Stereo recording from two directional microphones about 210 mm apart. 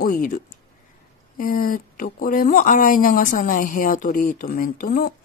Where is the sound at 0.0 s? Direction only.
40° left (ahead or behind).